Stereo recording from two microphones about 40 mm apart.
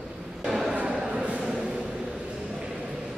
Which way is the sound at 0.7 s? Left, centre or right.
Right.